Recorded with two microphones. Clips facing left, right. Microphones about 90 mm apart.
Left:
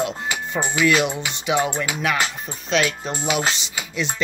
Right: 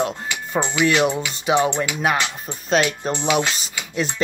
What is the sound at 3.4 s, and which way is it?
Speech, 25° left (ahead or behind).